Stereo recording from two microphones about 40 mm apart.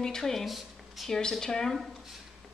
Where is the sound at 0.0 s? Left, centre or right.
Centre.